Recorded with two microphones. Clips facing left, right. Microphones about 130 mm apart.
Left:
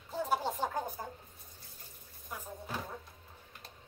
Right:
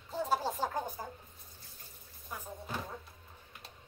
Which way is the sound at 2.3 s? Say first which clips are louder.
Even; 5° left (ahead or behind).